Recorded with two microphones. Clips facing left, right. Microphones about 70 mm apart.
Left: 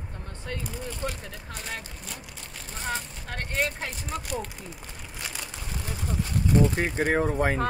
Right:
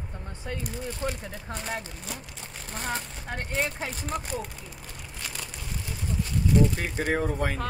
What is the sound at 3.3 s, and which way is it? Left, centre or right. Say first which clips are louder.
Speech: left 1 dB; centre.